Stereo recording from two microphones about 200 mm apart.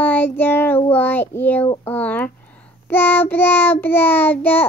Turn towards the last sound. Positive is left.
turn(degrees=10)  # may be behind; listen again after turning